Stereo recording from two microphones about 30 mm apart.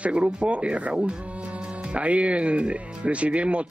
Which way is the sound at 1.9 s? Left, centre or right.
Right.